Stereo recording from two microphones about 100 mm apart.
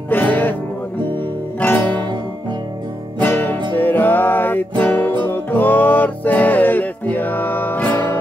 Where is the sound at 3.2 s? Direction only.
15° left (ahead or behind).